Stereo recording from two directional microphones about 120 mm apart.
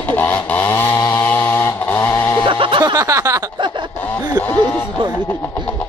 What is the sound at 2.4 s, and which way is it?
Music, 45° right (ahead or behind).